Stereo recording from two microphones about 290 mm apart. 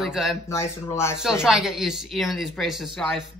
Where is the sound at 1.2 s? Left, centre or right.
Centre.